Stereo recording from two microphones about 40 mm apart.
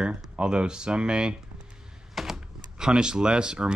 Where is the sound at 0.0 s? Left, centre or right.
Right.